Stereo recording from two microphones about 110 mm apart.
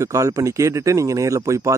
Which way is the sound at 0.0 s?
30° right (ahead or behind).